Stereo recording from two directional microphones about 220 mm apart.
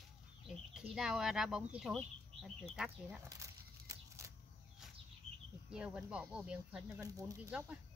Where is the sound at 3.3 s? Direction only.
15° right (ahead or behind).